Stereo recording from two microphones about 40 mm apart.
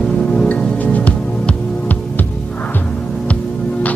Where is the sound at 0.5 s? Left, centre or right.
Left.